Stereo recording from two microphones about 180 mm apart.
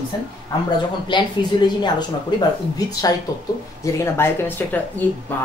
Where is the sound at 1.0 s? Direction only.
25° left (ahead or behind).